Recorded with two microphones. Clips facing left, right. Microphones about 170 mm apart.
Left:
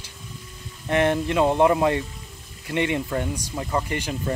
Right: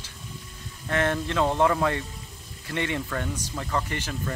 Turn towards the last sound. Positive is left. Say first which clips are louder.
# left 3 dB
turn(degrees=15)  # may be behind; listen again after turning